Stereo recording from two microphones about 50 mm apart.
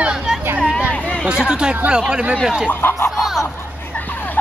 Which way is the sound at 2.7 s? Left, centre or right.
Left.